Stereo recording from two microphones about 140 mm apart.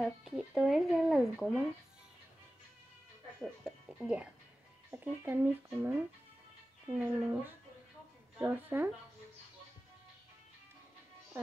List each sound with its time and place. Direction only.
0.2 s speech: 5° right (ahead or behind)
4.0 s speech: 5° right (ahead or behind)
11.3 s speech: 15° right (ahead or behind)